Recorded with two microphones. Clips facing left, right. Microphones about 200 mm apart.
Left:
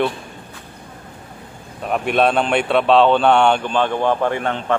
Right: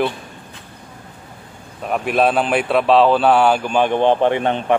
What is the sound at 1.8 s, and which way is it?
A man's voice, centre (ahead or behind).